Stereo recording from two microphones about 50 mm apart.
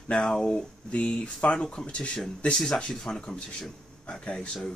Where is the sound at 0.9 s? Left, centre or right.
Left.